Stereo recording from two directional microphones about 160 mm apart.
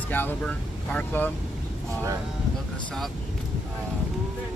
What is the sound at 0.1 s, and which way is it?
Speech, 10° left (ahead or behind).